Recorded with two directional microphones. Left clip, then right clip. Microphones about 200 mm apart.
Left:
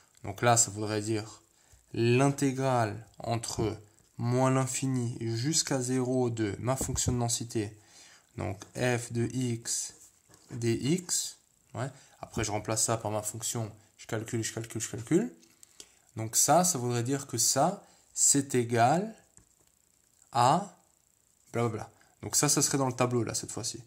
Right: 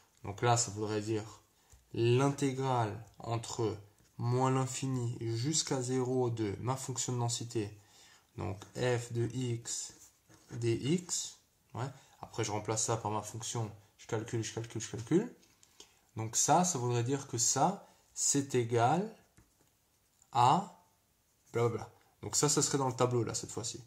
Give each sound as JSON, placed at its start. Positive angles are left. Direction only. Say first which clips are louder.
{"t": 0.2, "sound": "speech", "louder": "left 5 dB", "side_deg": 40}
{"t": 20.2, "sound": "a sound", "louder": "left 2 dB", "side_deg": 40}
{"t": 21.5, "sound": "speech", "louder": "left 1 dB", "side_deg": 40}